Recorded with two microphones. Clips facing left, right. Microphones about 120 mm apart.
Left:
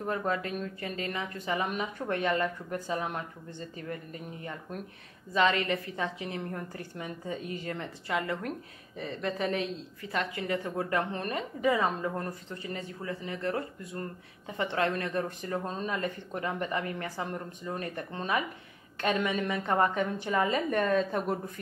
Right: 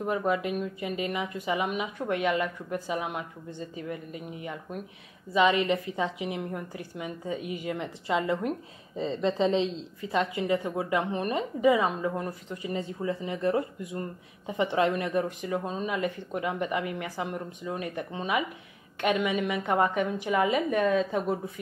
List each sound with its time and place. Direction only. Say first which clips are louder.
0.0 s speech: right 4 dB; 10° right (ahead or behind)
12.7 s speech: right 8 dB; 20° right (ahead or behind); by 21.4 s 5° right (ahead or behind)